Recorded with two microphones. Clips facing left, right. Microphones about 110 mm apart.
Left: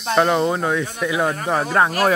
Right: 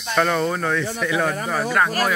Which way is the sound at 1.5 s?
30° left (ahead or behind).